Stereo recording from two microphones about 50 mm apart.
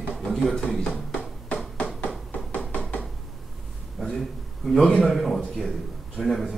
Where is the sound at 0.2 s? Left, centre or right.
Centre.